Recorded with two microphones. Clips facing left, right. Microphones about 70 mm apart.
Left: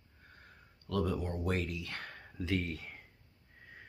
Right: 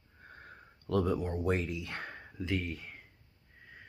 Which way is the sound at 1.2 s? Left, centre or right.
Centre.